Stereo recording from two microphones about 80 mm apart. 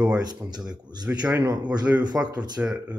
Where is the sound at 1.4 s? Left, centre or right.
Right.